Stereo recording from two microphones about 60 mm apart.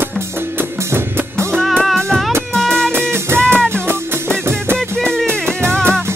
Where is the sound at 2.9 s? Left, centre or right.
Right.